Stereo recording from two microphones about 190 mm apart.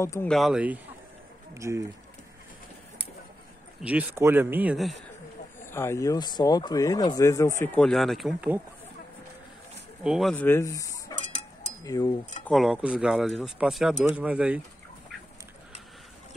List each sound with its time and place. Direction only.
0.0 s speech: 15° left (ahead or behind)
0.3 s speech: centre (ahead or behind)
1.5 s speech: 15° right (ahead or behind)
3.8 s speech: 10° right (ahead or behind)
5.7 s speech: 15° left (ahead or behind); by 8.5 s 5° right (ahead or behind)
10.0 s speech: centre (ahead or behind)
10.3 s speech: 10° left (ahead or behind)
11.1 s a sound: 40° left (ahead or behind)
11.8 s a sound: 20° left (ahead or behind)
12.4 s speech: centre (ahead or behind)